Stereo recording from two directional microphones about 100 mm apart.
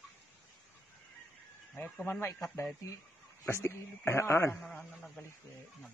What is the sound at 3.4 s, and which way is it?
A man's voice, 25° left (ahead or behind).